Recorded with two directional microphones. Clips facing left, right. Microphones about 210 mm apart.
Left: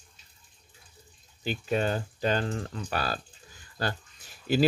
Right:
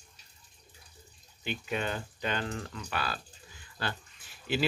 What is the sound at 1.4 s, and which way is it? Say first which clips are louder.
Speech: left 6 dB; 40° left (ahead or behind).